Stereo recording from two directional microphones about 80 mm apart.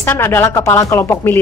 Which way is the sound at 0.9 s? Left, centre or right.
Left.